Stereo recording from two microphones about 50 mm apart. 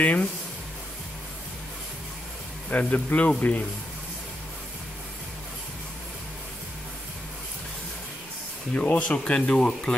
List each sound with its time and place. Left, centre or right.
0.0 s speech: left
2.7 s speech: left
8.7 s speech: left